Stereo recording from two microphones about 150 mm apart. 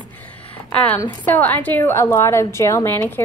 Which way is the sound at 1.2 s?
10° left (ahead or behind).